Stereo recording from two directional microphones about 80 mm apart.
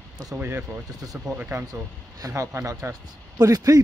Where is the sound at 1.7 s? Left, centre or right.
Right.